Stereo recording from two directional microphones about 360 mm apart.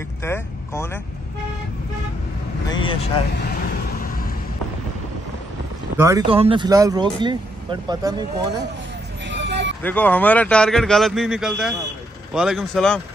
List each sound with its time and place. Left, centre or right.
0.2 s speech: centre
2.7 s speech: centre
5.9 s speech: centre
9.3 s a sound: right
9.8 s a man's voice: centre